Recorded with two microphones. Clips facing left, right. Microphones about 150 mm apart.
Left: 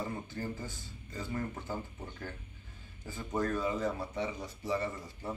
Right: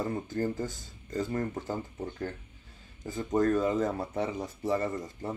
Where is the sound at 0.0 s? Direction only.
45° right (ahead or behind).